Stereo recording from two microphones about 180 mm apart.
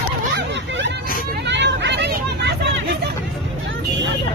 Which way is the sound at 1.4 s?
75° right (ahead or behind).